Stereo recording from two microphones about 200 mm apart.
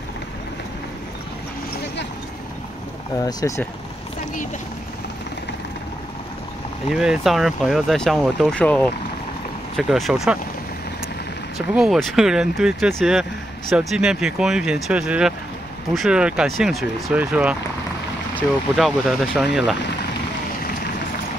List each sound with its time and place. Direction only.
3.2 s speech: 20° left (ahead or behind)
6.9 s speech: centre (ahead or behind)
11.5 s speech: centre (ahead or behind)